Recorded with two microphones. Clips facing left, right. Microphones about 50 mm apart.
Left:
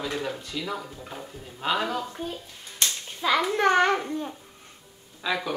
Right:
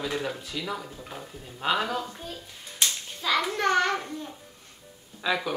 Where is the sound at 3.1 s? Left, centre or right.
Centre.